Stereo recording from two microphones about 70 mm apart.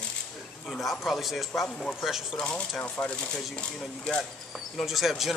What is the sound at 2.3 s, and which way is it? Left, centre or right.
Speech, centre.